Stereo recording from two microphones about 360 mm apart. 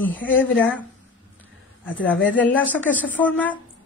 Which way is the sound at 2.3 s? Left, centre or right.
Centre.